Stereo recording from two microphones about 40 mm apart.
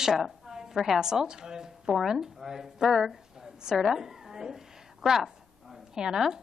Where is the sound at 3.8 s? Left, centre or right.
Centre.